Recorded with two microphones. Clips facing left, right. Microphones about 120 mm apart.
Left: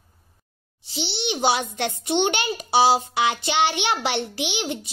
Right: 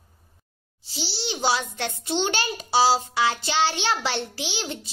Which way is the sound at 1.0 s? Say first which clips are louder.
Left 3 dB; 20° left (ahead or behind).